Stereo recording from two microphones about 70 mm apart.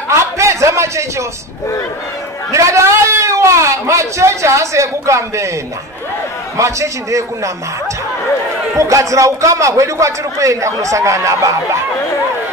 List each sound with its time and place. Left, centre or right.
0.1 s a sound: right
2.5 s a man's voice: right
6.5 s a man's voice: right
8.7 s a man's voice: right